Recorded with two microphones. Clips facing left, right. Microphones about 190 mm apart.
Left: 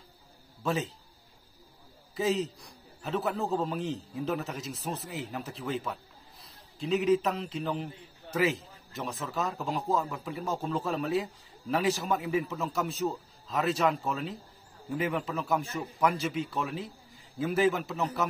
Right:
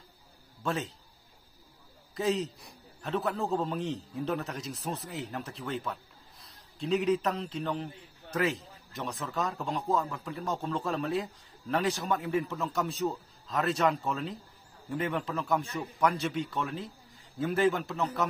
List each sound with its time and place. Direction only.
0.7 s a man's voice: centre (ahead or behind)
2.1 s a man's voice: centre (ahead or behind)